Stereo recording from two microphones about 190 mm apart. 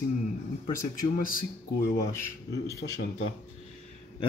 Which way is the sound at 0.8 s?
45° left (ahead or behind).